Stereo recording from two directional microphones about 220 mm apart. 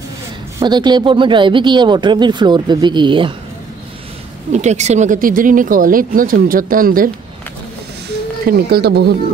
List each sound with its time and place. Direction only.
0.6 s speech: 20° right (ahead or behind)
4.5 s speech: 30° right (ahead or behind)
8.5 s speech: 45° right (ahead or behind)